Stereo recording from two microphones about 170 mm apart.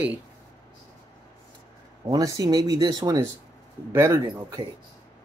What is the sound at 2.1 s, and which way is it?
Speech, 20° right (ahead or behind).